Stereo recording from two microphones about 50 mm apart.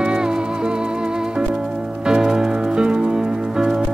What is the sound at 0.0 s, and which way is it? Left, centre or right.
Music, centre.